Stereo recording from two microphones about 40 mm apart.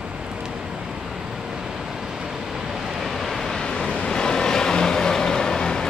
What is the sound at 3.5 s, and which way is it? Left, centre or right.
Vehicle, centre.